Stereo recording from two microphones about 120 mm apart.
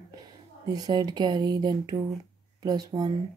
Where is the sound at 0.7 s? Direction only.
35° right (ahead or behind).